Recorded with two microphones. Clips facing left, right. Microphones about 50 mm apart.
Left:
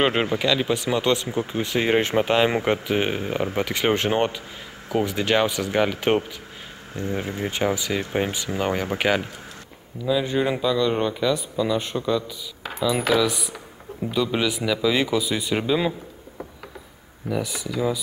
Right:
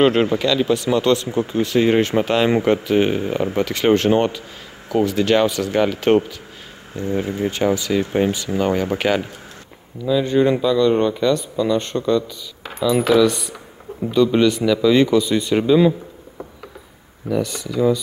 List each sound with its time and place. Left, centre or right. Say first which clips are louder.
0.0 s speech: right 5 dB; centre
7.5 s speech: right 5 dB; centre
17.3 s speech: right 5 dB; centre